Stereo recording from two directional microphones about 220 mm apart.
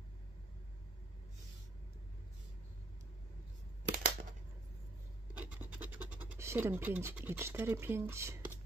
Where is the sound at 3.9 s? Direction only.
40° right (ahead or behind).